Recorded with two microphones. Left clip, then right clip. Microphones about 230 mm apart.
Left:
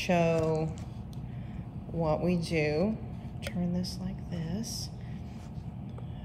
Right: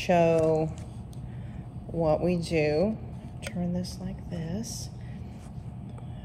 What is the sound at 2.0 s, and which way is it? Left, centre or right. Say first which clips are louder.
Speech: right 4 dB; centre.